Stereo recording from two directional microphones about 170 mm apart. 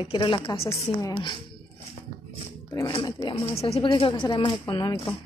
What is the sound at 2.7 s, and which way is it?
A woman's voice, 25° left (ahead or behind).